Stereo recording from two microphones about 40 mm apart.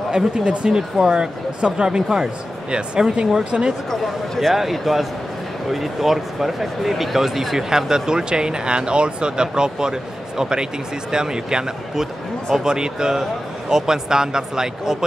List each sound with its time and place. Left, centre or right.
0.1 s speech: right
4.0 s speech: centre